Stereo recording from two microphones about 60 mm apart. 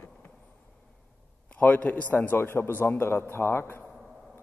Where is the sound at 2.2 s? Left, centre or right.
Left.